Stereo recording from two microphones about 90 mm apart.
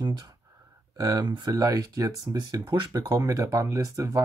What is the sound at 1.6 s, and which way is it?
Speech, 40° right (ahead or behind).